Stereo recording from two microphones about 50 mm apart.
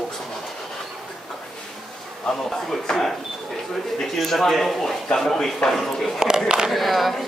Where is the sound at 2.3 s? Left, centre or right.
Centre.